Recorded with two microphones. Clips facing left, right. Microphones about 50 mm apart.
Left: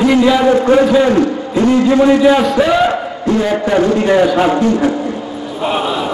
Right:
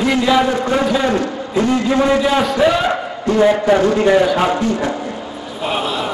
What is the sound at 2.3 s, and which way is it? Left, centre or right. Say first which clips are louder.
A man's voice: left 3 dB; centre.